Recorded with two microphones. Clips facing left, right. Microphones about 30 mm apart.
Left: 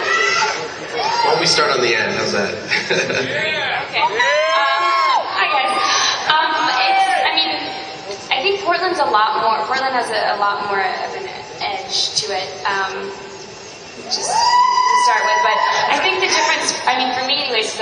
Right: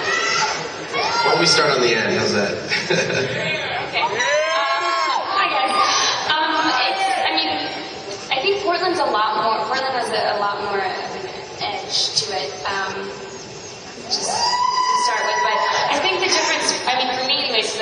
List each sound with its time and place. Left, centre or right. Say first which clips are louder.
0.0 s a sound: left 3 dB; left
1.6 s chuckle: left 1 dB; left
5.7 s a sound: left 1 dB; left
8.3 s a woman's voice: left 2 dB; left
10.3 s a man's voice: left 3 dB; left
12.3 s a man's voice: left 3 dB; left
14.4 s a man's voice: left 6 dB; left